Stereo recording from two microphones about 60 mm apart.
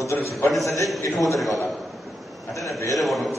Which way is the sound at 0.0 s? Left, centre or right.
Left.